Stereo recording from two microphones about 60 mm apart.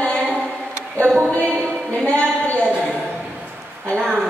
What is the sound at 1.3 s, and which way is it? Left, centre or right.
A woman's voice, left.